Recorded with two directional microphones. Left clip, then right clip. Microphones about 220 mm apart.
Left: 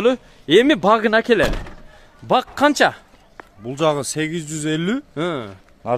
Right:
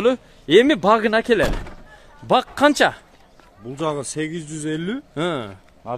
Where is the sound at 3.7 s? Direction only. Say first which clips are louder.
Left 6 dB; 40° left (ahead or behind).